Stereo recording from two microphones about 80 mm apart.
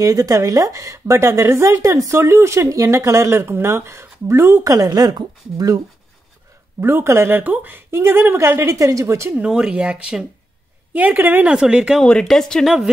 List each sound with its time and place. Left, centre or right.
0.0 s a woman's voice: right
6.8 s a woman's voice: right
9.3 s a woman's voice: centre
11.5 s speech: centre
12.0 s speech: centre